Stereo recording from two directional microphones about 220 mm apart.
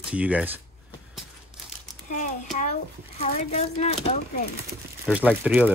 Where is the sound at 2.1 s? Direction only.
35° left (ahead or behind).